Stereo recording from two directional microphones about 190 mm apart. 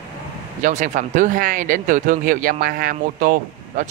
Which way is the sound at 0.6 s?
40° right (ahead or behind).